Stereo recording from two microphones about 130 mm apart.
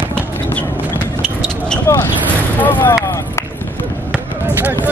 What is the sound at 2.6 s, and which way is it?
Speech, 15° left (ahead or behind).